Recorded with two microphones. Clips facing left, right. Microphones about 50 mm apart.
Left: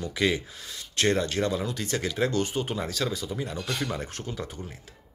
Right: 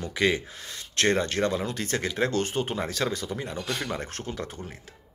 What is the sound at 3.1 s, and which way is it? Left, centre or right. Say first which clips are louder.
Speech: right 1 dB; right.